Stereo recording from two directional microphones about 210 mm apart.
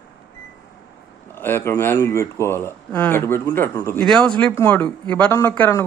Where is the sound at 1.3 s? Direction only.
10° left (ahead or behind).